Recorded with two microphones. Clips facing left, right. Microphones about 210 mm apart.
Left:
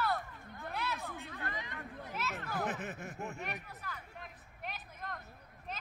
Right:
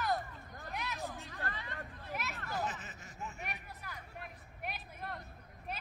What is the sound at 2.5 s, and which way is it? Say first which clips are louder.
Chuckle: left 2 dB; 60° left (ahead or behind).